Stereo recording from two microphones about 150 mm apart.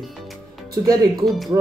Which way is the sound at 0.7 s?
25° right (ahead or behind).